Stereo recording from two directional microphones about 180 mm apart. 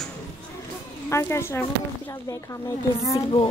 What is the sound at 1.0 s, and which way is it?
Speech, 15° left (ahead or behind).